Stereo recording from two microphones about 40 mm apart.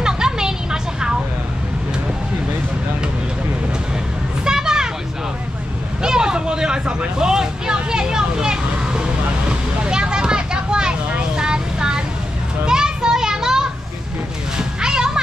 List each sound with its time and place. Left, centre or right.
0.0 s vehicle: centre
4.5 s a sound: centre
6.0 s vehicle: centre
12.6 s children playing: centre
14.6 s music: centre